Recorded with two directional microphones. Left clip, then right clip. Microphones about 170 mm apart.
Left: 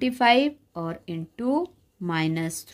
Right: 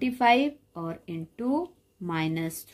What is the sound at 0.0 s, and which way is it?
Speech, 35° left (ahead or behind).